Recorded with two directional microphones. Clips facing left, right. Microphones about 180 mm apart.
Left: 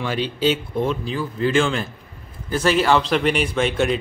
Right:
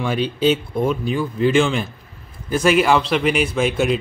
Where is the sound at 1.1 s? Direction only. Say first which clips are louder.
Right 3 dB; 10° right (ahead or behind).